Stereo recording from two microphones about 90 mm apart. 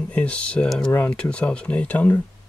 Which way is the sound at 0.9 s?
15° left (ahead or behind).